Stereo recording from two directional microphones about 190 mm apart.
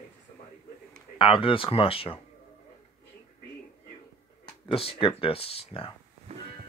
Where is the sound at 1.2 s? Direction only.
25° left (ahead or behind).